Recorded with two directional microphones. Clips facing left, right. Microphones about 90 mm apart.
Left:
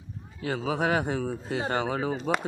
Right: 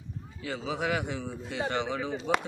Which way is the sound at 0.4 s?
45° left (ahead or behind).